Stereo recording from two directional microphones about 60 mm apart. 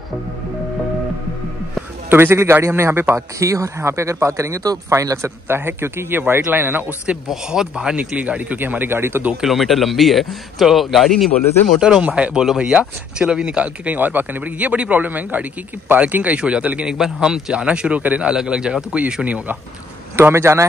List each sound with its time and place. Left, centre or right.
2.0 s a man's voice: right
3.2 s speech: right
5.6 s a man's voice: right
7.2 s speech: centre; by 9.2 s right
9.4 s speech: centre
11.8 s a man's voice: centre
13.9 s a man's voice: right
18.3 s a man's voice: centre
20.3 s a man's voice: right